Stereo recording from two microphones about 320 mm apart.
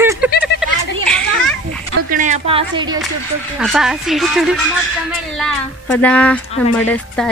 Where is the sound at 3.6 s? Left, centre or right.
Centre.